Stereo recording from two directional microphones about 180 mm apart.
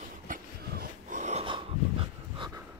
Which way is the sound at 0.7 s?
50° right (ahead or behind).